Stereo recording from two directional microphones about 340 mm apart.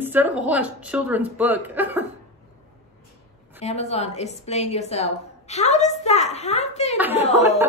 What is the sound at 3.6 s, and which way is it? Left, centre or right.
A woman's voice, centre.